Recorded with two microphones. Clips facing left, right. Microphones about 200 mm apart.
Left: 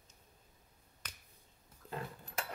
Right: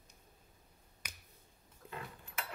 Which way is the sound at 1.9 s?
35° left (ahead or behind).